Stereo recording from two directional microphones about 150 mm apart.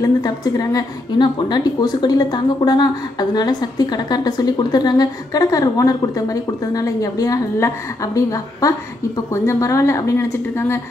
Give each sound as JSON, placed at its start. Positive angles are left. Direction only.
{"t": 0.0, "sound": "a woman's voice", "side_deg": 25}